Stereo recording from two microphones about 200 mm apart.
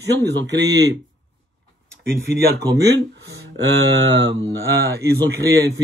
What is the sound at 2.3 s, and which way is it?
Speech, 60° right (ahead or behind).